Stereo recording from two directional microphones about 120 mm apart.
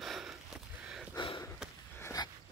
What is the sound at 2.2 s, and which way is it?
Dog, 35° left (ahead or behind).